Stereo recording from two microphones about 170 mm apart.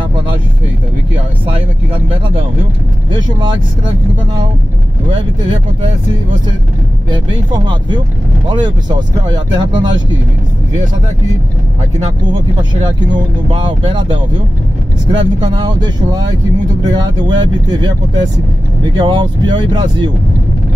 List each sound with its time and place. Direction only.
2.0 s speech: 30° right (ahead or behind)
5.1 s speech: 30° right (ahead or behind)
8.5 s speech: 25° right (ahead or behind)
12.8 s speech: 30° right (ahead or behind)